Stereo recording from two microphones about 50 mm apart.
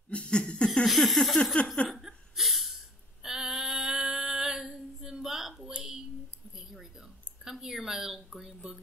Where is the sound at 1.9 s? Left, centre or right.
Centre.